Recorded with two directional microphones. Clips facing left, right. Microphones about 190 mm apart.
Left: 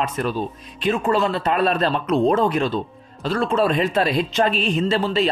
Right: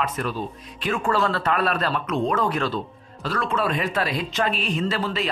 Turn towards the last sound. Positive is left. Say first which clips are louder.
# left 5 dB
turn(degrees=25)  # may be behind; listen again after turning